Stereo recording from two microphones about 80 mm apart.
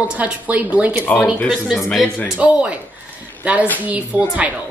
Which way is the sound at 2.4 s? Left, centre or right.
Centre.